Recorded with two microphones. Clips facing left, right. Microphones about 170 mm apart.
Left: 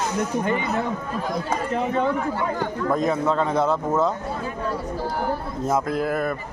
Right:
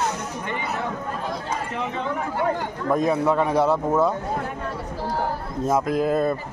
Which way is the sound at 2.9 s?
10° right (ahead or behind).